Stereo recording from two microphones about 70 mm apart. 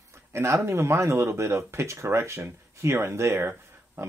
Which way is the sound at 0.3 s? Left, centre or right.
Right.